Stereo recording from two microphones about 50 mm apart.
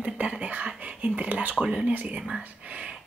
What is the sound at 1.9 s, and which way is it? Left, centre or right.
Speech, right.